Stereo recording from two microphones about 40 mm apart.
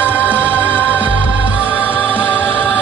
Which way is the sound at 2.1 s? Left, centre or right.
Left.